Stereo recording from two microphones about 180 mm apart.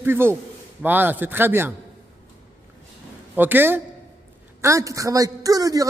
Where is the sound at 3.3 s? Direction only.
10° right (ahead or behind).